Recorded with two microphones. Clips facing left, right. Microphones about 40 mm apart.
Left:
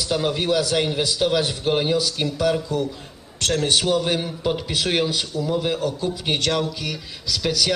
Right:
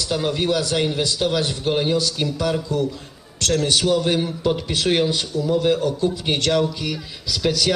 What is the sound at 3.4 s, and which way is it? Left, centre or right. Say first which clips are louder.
Speech: right 2 dB; left.